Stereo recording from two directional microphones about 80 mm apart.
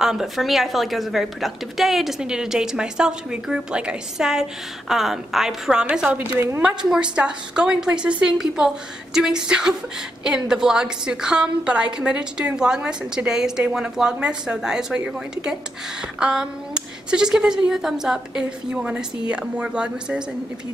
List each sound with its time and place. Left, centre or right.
0.0 s a woman's voice: centre